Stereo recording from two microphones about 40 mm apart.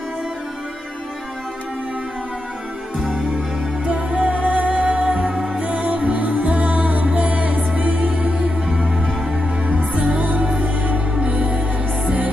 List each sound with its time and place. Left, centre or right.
3.0 s music: centre
3.3 s music: right
9.7 s music: right
11.1 s music: right